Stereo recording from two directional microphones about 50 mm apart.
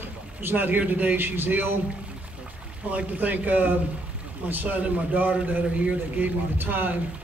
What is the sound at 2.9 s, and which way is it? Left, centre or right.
A man's voice, right.